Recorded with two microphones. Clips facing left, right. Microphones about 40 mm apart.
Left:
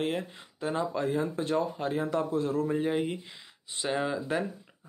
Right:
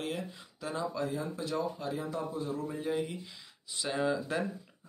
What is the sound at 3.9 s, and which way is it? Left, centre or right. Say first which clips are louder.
Speech: left 2 dB; left.